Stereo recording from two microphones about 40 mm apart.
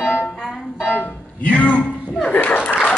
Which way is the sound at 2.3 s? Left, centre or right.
Left.